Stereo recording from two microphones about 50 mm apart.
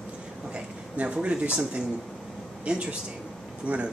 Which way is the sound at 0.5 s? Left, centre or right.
Right.